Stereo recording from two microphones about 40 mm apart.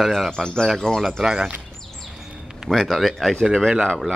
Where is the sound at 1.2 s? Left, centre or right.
Right.